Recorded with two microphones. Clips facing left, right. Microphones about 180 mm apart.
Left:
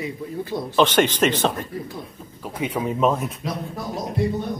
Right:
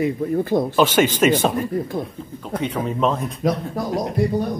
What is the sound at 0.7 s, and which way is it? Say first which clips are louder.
Speech: left 3 dB; 5° right (ahead or behind).